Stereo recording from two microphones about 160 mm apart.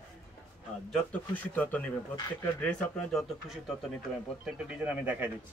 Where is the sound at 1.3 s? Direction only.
10° left (ahead or behind); by 5.3 s 10° right (ahead or behind).